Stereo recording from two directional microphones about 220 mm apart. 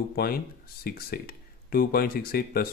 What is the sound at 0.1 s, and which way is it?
Speech, 45° left (ahead or behind).